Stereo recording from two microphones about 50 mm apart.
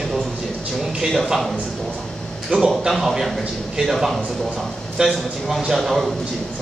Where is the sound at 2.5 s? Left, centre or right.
Right.